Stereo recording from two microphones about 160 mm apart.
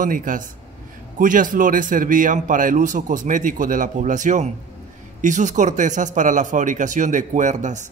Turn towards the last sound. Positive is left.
turn(degrees=-50)  # may be behind; listen again after turning